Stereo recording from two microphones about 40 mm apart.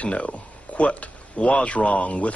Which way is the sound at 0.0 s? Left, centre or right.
Left.